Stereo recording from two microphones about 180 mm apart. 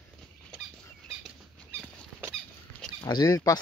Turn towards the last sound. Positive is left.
turn(degrees=20)  # may be behind; listen again after turning